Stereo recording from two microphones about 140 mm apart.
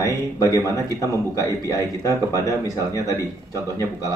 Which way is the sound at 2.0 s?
25° left (ahead or behind).